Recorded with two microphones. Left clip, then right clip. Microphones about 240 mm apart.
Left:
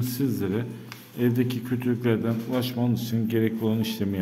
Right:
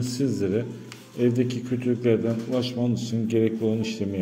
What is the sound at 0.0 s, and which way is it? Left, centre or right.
A man's voice, centre.